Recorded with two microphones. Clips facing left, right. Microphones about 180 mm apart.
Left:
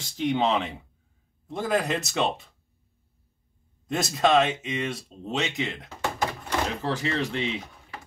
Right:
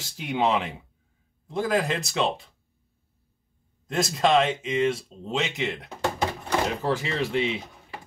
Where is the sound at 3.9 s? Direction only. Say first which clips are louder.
Even; centre (ahead or behind).